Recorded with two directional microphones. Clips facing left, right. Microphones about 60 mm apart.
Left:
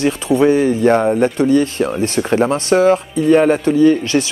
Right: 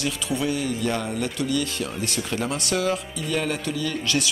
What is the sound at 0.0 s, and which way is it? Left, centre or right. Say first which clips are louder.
Speech: left 13 dB; left.